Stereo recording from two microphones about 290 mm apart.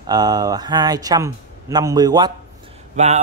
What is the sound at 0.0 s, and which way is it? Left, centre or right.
A man's voice, centre.